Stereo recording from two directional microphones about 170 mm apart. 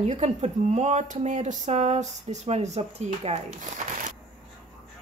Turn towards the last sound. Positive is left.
turn(degrees=-40)  # may be behind; listen again after turning